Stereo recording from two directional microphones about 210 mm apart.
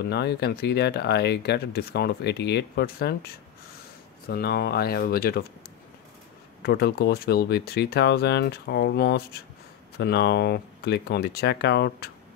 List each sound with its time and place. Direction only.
0.0 s speech: 50° left (ahead or behind)
4.3 s speech: 50° left (ahead or behind)
6.6 s speech: 50° left (ahead or behind)